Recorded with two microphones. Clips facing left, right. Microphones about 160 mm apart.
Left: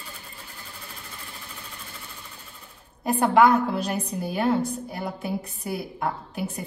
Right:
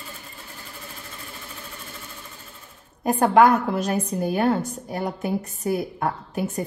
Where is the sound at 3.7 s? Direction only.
50° right (ahead or behind).